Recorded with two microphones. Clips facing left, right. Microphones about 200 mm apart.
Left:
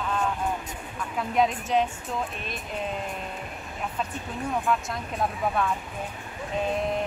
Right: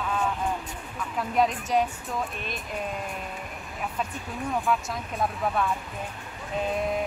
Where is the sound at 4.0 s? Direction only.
Centre (ahead or behind).